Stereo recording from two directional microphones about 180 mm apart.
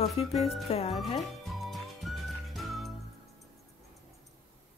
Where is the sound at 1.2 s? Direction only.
Centre (ahead or behind).